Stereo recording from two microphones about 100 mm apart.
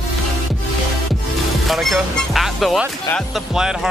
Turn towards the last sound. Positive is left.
turn(degrees=-5)  # may be behind; listen again after turning